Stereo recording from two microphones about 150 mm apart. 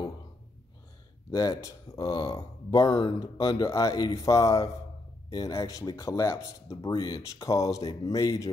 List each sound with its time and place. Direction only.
1.3 s speech: 20° left (ahead or behind)